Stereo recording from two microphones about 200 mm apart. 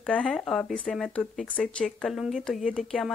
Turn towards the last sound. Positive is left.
turn(degrees=5)  # may be behind; listen again after turning